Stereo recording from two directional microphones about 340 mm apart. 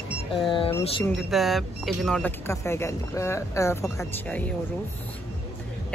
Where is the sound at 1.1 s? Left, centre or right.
Centre.